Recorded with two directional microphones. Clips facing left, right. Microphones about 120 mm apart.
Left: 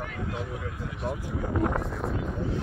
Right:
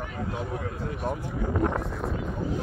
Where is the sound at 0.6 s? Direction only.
45° right (ahead or behind).